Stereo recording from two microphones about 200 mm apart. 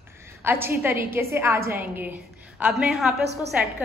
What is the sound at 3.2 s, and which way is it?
Speech, 55° right (ahead or behind).